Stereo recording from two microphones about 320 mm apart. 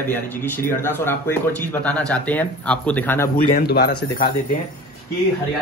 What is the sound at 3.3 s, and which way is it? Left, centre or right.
Speech, left.